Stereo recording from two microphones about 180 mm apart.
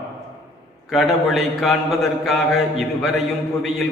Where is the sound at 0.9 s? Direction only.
Centre (ahead or behind).